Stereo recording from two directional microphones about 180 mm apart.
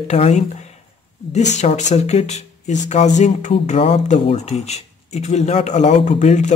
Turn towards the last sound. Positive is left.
turn(degrees=40)  # may be behind; listen again after turning